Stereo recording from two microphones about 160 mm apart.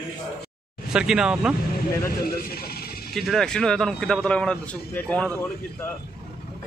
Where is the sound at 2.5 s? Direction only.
75° left (ahead or behind).